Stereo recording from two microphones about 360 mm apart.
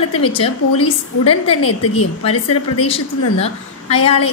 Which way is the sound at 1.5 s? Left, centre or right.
Left.